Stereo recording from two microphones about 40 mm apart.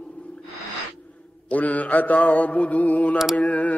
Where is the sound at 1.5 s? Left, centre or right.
Left.